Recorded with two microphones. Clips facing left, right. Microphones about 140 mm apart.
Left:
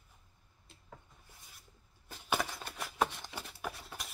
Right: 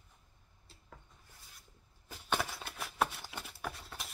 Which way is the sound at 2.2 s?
Centre (ahead or behind).